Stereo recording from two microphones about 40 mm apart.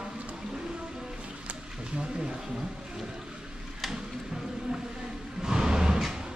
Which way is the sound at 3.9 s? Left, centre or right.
Centre.